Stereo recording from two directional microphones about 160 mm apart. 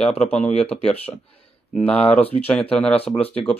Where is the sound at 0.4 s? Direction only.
40° left (ahead or behind).